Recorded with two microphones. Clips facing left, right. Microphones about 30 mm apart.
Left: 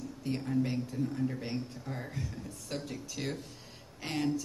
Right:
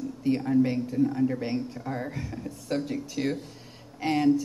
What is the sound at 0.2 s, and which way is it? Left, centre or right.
A man's voice, right.